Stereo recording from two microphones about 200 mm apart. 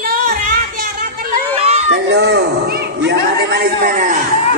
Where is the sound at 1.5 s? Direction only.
30° right (ahead or behind).